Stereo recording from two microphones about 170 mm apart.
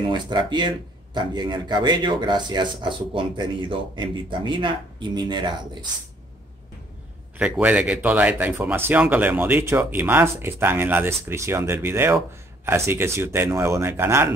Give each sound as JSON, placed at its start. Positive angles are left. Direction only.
{"t": 0.0, "sound": "speech", "side_deg": -25}
{"t": 7.3, "sound": "speech", "side_deg": -5}